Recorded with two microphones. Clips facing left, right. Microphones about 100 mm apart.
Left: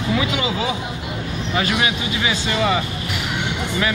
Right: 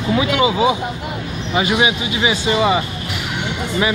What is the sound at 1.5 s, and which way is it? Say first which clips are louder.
Speech: right 4 dB; 15° right (ahead or behind).